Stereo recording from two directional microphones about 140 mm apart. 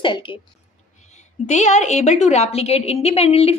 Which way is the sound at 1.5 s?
55° left (ahead or behind).